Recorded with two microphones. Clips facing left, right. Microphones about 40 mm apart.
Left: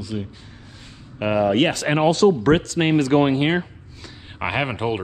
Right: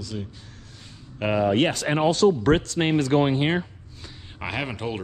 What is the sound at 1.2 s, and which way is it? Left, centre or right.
Speech, centre.